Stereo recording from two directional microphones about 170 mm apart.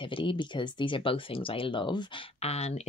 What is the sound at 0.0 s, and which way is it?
Speech, 30° left (ahead or behind).